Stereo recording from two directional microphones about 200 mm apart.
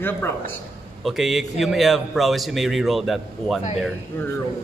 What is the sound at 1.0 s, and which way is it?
A man's voice, centre (ahead or behind).